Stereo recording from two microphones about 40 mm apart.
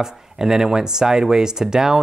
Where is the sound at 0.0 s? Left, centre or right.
Centre.